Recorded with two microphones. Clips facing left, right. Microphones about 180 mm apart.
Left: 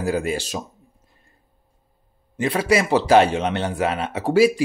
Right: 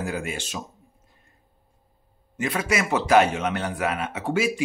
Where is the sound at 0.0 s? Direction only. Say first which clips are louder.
Left 7 dB; 35° left (ahead or behind).